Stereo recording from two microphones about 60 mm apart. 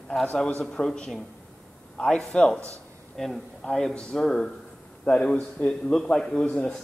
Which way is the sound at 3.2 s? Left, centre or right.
Centre.